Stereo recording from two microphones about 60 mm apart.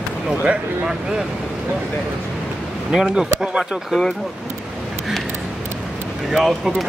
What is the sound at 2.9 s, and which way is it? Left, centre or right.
Speech, centre.